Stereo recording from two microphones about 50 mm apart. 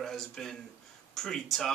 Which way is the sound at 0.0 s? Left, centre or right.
Centre.